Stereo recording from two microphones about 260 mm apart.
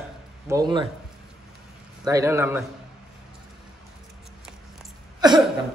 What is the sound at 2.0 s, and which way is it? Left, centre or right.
Speech, centre.